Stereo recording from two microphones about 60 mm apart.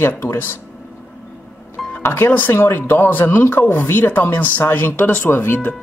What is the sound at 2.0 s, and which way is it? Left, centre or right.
Speech, left.